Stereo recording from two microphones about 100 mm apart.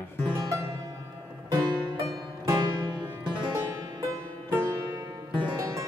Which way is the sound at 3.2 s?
50° right (ahead or behind).